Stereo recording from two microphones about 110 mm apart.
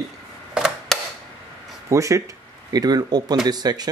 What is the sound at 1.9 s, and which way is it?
Speech, 30° right (ahead or behind).